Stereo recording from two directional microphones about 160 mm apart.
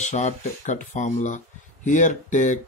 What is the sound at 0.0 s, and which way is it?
Speech, 45° left (ahead or behind).